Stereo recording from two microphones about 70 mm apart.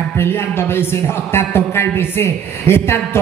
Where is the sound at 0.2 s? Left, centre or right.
Left.